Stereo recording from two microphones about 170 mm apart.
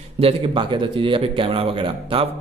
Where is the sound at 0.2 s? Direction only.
30° right (ahead or behind).